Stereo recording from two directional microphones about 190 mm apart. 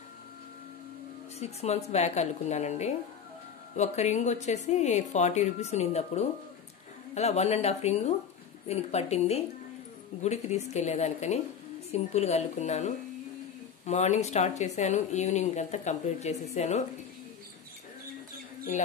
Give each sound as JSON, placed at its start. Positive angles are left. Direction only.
{"t": 1.4, "sound": "speech", "side_deg": 35}